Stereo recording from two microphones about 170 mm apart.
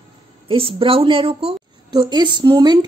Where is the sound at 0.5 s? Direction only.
30° right (ahead or behind).